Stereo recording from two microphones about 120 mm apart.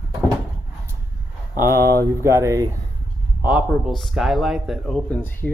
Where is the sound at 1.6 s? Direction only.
25° right (ahead or behind).